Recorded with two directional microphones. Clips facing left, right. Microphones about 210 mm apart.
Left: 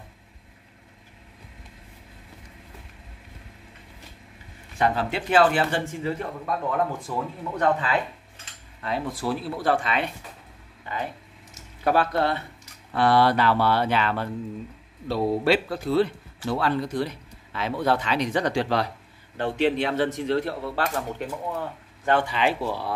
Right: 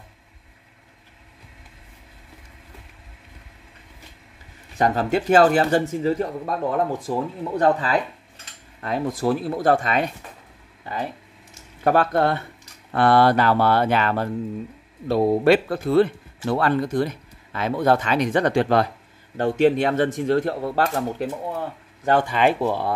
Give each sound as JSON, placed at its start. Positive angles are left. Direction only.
{"t": 4.7, "sound": "speech", "side_deg": -40}
{"t": 11.8, "sound": "speech", "side_deg": -50}